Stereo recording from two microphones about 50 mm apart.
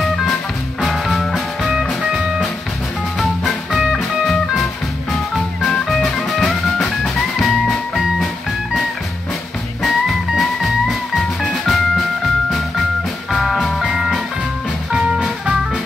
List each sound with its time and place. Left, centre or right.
0.7 s music: centre
3.2 s music: centre
5.9 s music: centre
9.8 s music: centre
13.8 s music: centre